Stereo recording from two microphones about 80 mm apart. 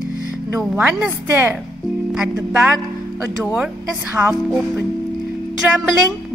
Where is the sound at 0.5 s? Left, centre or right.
Right.